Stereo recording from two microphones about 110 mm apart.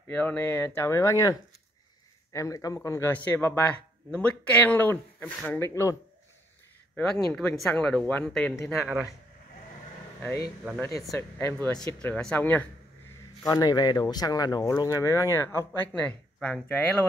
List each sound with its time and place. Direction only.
0.1 s speech: 15° left (ahead or behind)
2.3 s speech: 30° left (ahead or behind)
3.1 s speech: 15° left (ahead or behind)
7.0 s speech: 10° left (ahead or behind)
11.1 s speech: 20° left (ahead or behind)
12.0 s speech: 10° left (ahead or behind)
13.5 s speech: 35° left (ahead or behind)
15.9 s speech: 10° left (ahead or behind)